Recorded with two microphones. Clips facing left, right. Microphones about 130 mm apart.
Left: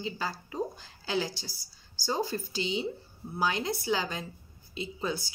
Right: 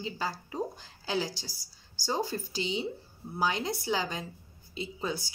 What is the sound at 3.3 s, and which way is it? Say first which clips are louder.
Speech: even; 30° right (ahead or behind).